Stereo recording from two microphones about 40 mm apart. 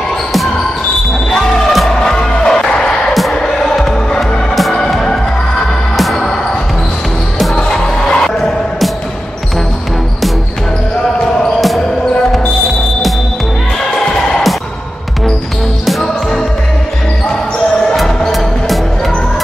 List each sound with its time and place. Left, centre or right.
1.9 s music: centre
3.1 s a sound: centre
3.3 s music: centre
4.9 s basketball bounce: centre
5.9 s music: centre
7.8 s music: centre
14.0 s music: centre
17.9 s music: centre